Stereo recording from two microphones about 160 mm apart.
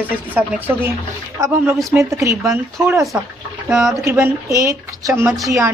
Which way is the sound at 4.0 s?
20° right (ahead or behind).